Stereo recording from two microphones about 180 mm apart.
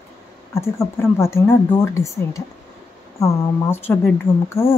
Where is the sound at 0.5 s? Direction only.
15° left (ahead or behind).